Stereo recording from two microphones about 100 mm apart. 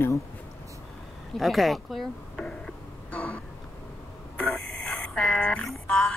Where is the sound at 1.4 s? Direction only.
Centre (ahead or behind).